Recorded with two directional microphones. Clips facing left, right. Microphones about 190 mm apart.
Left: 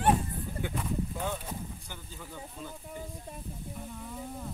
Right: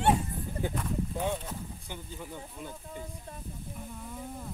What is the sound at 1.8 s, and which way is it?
Speech, 20° right (ahead or behind).